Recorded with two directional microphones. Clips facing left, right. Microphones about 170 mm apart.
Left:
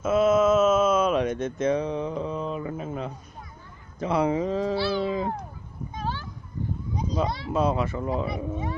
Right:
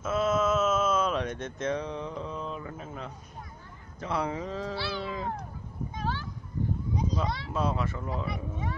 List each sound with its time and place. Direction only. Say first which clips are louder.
0.0 s a sound: left 7 dB; 15° left (ahead or behind)
4.0 s speech: left 8 dB; 15° left (ahead or behind)
4.7 s speech: left 8 dB; 30° left (ahead or behind)
5.0 s speech: left 8 dB; 15° left (ahead or behind)
5.9 s a sound: left 2 dB; 30° left (ahead or behind)
7.2 s speech: left 3 dB; 35° left (ahead or behind)
7.5 s speech: left 7 dB; 20° left (ahead or behind)